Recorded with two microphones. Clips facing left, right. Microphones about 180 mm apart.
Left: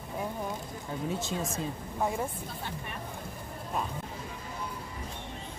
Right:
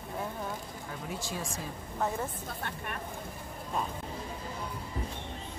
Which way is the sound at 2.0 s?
10° left (ahead or behind).